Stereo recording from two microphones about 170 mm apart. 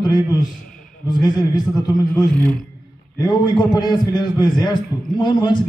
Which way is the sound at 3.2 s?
25° left (ahead or behind).